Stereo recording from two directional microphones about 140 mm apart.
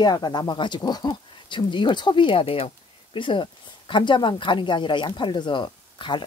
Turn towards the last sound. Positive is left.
turn(degrees=35)  # may be behind; listen again after turning